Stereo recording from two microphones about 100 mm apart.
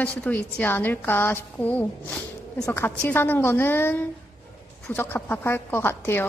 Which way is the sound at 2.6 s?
25° left (ahead or behind).